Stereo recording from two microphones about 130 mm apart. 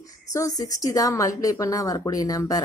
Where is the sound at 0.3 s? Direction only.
25° left (ahead or behind).